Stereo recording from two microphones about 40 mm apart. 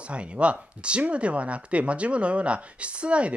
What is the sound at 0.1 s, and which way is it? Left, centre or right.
Speech, right.